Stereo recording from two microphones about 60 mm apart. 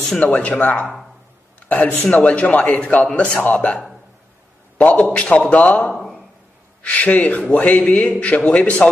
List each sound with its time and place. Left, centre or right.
0.1 s a man's voice: left
5.9 s speech: centre
6.8 s a man's voice: left